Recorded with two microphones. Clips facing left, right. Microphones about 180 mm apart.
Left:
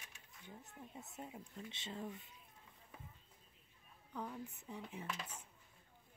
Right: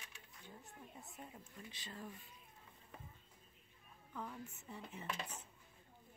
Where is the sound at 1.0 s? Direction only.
20° left (ahead or behind).